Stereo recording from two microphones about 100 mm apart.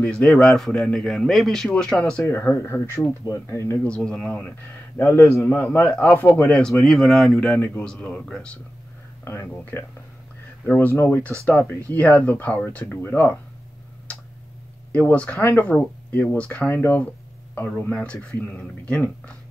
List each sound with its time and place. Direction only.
0.0 s a man's voice: 15° left (ahead or behind)
2.2 s speech: 20° left (ahead or behind)
3.8 s speech: 10° left (ahead or behind)
4.9 s speech: 25° left (ahead or behind)
5.9 s speech: 10° left (ahead or behind)
6.1 s speech: 20° left (ahead or behind)
6.5 s a man's voice: 5° left (ahead or behind)
7.5 s speech: 10° left (ahead or behind)
9.2 s speech: 25° left (ahead or behind)
14.9 s speech: 15° left (ahead or behind)